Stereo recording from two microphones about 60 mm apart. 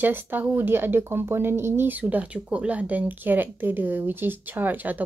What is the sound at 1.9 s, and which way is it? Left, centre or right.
Speech, right.